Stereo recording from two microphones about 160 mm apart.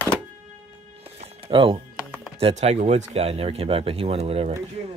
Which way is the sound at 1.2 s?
40° right (ahead or behind).